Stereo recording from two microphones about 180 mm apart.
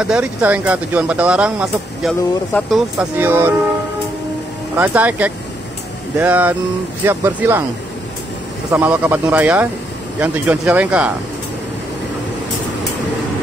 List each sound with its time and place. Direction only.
0.0 s speech: 5° right (ahead or behind)
4.7 s speech: 10° right (ahead or behind)
8.7 s speech: 10° right (ahead or behind)